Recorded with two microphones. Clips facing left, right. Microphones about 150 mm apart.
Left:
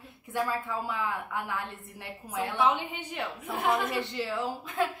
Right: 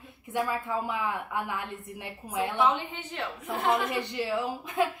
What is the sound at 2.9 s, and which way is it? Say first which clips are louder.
Speech: even; 10° left (ahead or behind).